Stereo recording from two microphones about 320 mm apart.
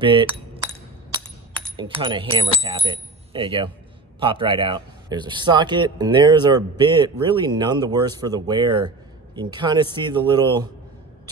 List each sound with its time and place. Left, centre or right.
0.0 s a man's voice: centre
1.1 s coin: centre
2.6 s a man's voice: centre